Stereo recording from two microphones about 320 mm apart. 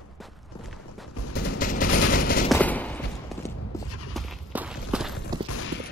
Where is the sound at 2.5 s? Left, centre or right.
Centre.